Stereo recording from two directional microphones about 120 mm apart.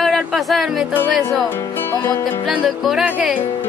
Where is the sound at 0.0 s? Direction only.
Centre (ahead or behind).